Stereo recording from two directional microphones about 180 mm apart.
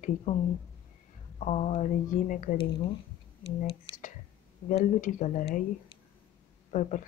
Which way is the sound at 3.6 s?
45° left (ahead or behind).